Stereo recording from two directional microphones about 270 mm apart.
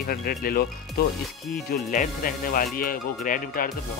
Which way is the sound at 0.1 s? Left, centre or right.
Left.